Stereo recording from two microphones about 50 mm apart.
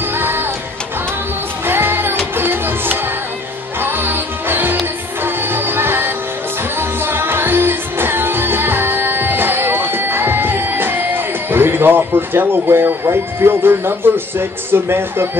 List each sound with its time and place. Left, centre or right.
0.2 s music: right
1.7 s music: right
14.7 s speech: right